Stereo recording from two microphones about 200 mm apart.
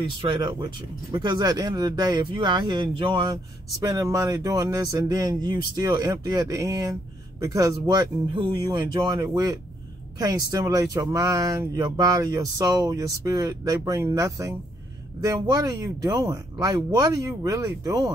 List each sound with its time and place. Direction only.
0.0 s speech: 25° right (ahead or behind)